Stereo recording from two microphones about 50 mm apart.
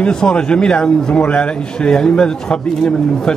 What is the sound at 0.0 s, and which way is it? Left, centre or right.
A man's voice, centre.